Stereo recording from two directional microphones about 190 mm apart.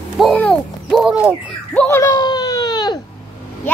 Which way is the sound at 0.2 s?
5° left (ahead or behind).